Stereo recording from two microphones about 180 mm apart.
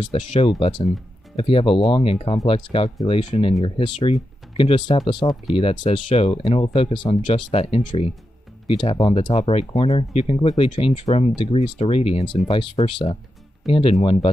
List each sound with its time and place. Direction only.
0.0 s speech: 30° left (ahead or behind)